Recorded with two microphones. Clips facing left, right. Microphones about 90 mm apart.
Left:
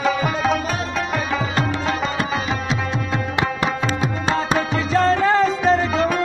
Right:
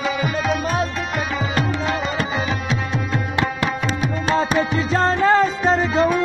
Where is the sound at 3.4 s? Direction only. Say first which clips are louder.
Even; 20° left (ahead or behind).